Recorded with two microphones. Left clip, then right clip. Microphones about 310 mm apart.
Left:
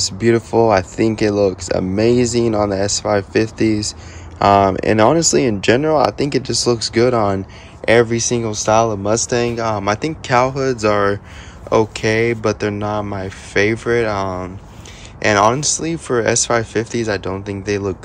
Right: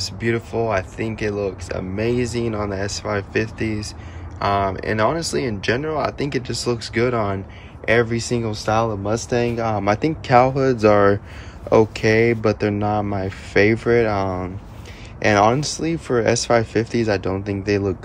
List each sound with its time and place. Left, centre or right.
0.0 s speech: centre